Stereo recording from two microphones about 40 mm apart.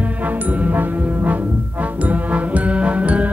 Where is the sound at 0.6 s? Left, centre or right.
Right.